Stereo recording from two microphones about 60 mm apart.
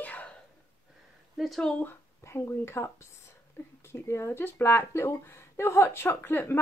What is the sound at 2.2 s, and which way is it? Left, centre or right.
A woman's voice, left.